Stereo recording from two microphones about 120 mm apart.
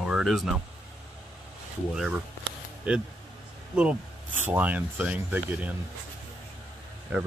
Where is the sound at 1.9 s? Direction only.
5° right (ahead or behind).